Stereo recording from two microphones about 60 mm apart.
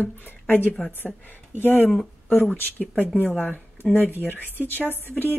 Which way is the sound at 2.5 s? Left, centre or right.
Left.